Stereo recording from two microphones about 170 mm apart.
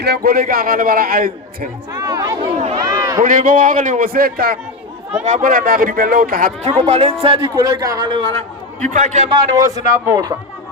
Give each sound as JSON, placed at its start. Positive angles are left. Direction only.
{"t": 0.0, "sound": "a man's voice", "side_deg": -65}
{"t": 2.0, "sound": "a man's voice", "side_deg": -20}
{"t": 2.8, "sound": "a sound", "side_deg": -20}
{"t": 3.2, "sound": "a man's voice", "side_deg": -55}
{"t": 5.2, "sound": "a man's voice", "side_deg": -50}
{"t": 6.8, "sound": "a man's voice", "side_deg": -40}
{"t": 7.5, "sound": "a man's voice", "side_deg": -20}
{"t": 9.3, "sound": "a man's voice", "side_deg": -20}